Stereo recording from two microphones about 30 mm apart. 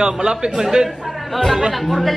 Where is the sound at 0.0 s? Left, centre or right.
Right.